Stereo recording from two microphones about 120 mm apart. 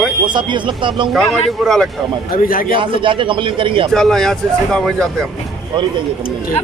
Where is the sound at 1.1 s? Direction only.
Centre (ahead or behind).